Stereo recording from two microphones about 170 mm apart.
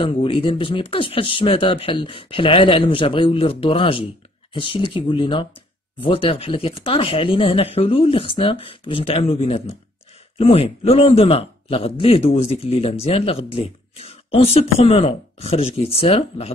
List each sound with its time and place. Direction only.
0.0 s a man's voice: 30° left (ahead or behind)